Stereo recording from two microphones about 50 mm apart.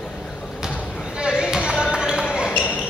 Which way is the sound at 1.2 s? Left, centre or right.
Centre.